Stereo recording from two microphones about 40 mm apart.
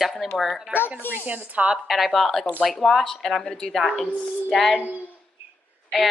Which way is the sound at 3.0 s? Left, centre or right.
Centre.